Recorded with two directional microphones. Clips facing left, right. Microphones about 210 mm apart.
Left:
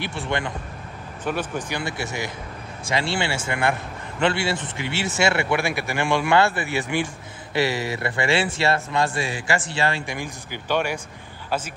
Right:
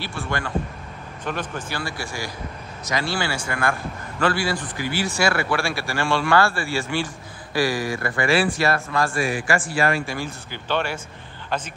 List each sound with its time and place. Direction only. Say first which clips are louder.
0.0 s speech: left 2 dB; 20° left (ahead or behind)
1.2 s speech: left 3 dB; 10° left (ahead or behind)